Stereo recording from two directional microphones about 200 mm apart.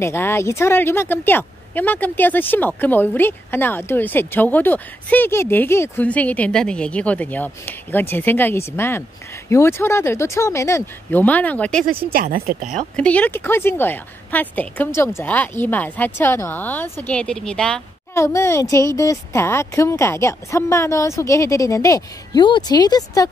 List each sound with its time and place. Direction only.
0.0 s a woman's voice: 10° left (ahead or behind)
12.1 s speech: 45° right (ahead or behind)
12.9 s a woman's voice: 5° left (ahead or behind)
18.1 s a woman's voice: 15° left (ahead or behind)